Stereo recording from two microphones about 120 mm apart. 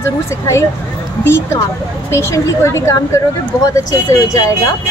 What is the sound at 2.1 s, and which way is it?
A woman's voice, 25° left (ahead or behind).